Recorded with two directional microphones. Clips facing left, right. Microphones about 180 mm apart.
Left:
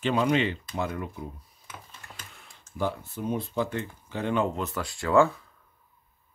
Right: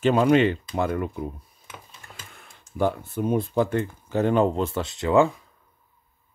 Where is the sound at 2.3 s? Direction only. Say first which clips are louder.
Right 3 dB; 50° right (ahead or behind).